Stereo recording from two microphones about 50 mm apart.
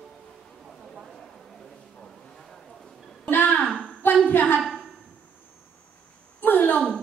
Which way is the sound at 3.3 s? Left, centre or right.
Left.